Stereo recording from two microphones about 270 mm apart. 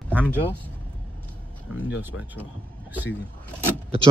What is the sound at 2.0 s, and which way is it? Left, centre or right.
Speech, centre.